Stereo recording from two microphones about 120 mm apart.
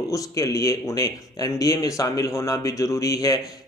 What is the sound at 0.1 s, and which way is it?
Speech, 30° left (ahead or behind).